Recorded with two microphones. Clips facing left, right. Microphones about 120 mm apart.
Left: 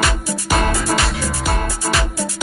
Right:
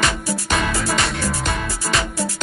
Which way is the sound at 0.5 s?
45° left (ahead or behind).